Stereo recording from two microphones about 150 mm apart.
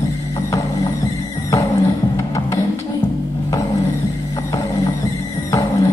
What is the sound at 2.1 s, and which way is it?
Music, 20° left (ahead or behind).